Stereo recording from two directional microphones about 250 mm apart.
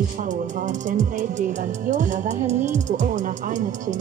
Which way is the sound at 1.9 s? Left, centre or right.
Right.